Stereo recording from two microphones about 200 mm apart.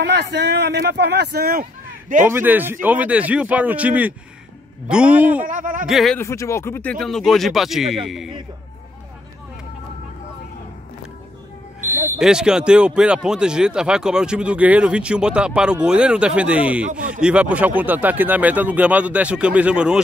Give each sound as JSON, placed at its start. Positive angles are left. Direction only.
{"t": 0.0, "sound": "speech", "side_deg": -60}
{"t": 2.2, "sound": "speech", "side_deg": -10}
{"t": 5.5, "sound": "speech", "side_deg": -40}
{"t": 5.9, "sound": "speech", "side_deg": 0}
{"t": 6.1, "sound": "speech", "side_deg": 15}
{"t": 11.9, "sound": "smoke detector", "side_deg": -40}
{"t": 12.2, "sound": "speech", "side_deg": -5}